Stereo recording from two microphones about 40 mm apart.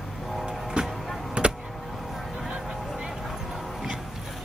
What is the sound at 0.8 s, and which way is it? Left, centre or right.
Music, right.